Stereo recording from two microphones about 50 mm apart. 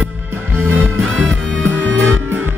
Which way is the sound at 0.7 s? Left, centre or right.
Right.